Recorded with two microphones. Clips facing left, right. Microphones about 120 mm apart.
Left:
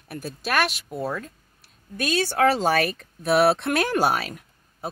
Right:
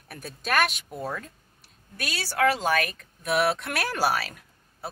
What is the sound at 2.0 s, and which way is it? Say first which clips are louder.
Speech: left 5 dB; 20° left (ahead or behind).